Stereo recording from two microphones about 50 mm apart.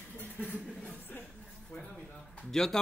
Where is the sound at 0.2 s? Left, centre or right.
Left.